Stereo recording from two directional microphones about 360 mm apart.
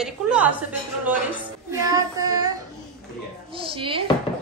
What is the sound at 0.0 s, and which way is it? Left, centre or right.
Speech, centre.